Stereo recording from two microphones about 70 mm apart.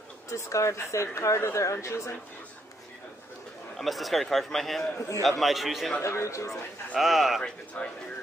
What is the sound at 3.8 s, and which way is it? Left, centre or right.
A man's voice, centre.